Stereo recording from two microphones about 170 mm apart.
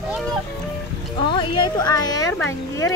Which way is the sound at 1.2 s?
30° left (ahead or behind).